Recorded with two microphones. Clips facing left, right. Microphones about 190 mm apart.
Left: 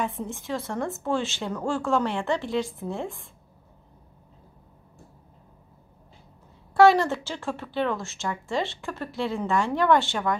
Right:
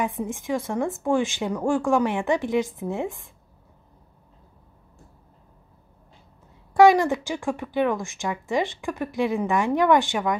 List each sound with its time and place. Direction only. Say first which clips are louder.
0.0 s speech: right 3 dB; 15° right (ahead or behind)
6.7 s speech: right 2 dB; 15° right (ahead or behind)